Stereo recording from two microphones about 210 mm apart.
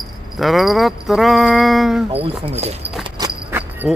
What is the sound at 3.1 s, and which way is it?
Horse, 15° right (ahead or behind).